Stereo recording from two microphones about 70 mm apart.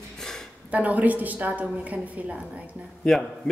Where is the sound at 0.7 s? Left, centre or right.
Right.